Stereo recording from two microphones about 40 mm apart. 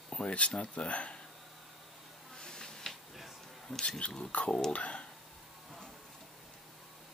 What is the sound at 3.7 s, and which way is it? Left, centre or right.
Speech, centre.